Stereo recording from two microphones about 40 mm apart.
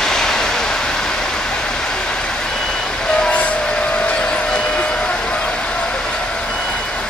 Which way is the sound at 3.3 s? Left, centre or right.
Left.